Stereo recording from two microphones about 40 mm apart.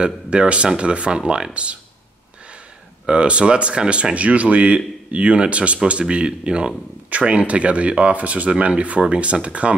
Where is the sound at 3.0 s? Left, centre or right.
Right.